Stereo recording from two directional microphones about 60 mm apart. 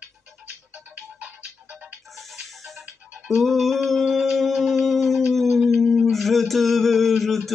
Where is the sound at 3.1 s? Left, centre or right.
Centre.